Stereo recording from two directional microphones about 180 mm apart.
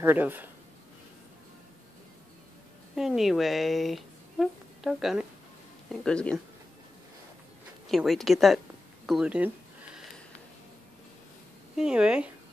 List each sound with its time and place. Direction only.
0.0 s speech: 10° right (ahead or behind)
3.0 s speech: centre (ahead or behind)
7.9 s speech: centre (ahead or behind)
11.7 s speech: 5° right (ahead or behind)